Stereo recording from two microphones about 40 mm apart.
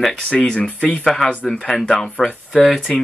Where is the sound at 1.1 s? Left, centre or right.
Centre.